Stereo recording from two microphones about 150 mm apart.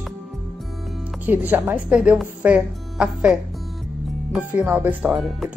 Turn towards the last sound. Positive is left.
turn(degrees=0)  # may be behind; listen again after turning